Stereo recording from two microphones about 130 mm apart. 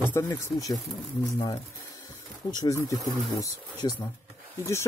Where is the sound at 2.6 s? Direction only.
25° left (ahead or behind).